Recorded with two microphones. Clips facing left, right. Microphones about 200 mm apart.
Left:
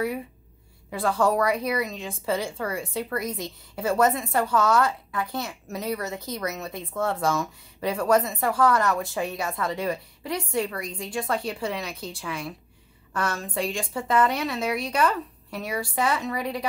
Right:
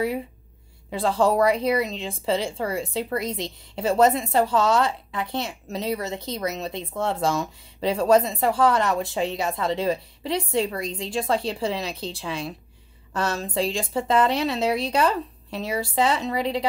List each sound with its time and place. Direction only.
0.8 s a woman's voice: 25° right (ahead or behind)